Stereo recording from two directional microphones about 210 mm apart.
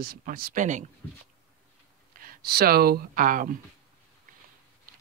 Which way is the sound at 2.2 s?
45° right (ahead or behind).